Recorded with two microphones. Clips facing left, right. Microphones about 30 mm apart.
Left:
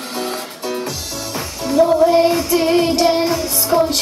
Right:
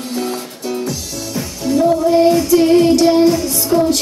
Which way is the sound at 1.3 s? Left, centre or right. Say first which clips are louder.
Right 1 dB; left.